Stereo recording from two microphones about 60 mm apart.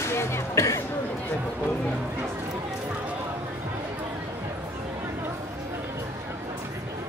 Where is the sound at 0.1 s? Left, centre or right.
Left.